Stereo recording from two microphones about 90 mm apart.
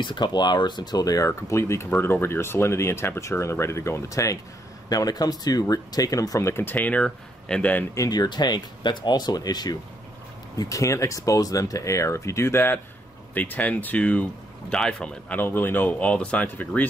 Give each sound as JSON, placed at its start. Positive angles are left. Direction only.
{"t": 0.0, "sound": "speech", "side_deg": 55}
{"t": 6.5, "sound": "speech", "side_deg": 25}
{"t": 7.9, "sound": "speech", "side_deg": 45}
{"t": 10.6, "sound": "speech", "side_deg": 35}
{"t": 15.3, "sound": "speech", "side_deg": 20}